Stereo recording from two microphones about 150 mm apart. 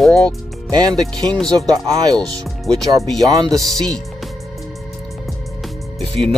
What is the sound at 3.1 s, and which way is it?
Speech, 25° right (ahead or behind).